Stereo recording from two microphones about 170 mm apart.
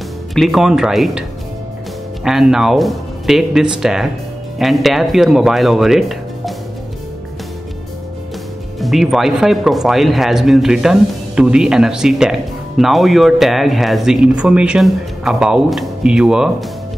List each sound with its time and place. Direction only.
0.3 s speech: centre (ahead or behind)
2.2 s speech: 5° right (ahead or behind)
8.7 s speech: centre (ahead or behind)